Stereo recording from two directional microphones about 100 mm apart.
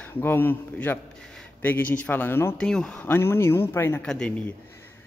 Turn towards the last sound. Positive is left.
turn(degrees=10)  # may be behind; listen again after turning